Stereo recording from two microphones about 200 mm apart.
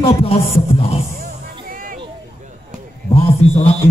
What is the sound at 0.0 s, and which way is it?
Speech, 30° left (ahead or behind).